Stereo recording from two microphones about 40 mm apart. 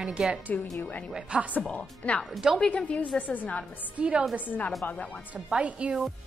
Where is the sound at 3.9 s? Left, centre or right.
Right.